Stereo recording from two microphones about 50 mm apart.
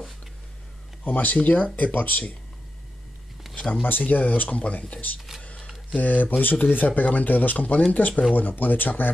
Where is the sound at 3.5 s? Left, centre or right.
Centre.